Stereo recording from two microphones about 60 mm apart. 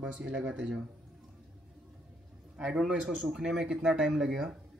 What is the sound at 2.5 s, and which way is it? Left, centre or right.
A man's voice, centre.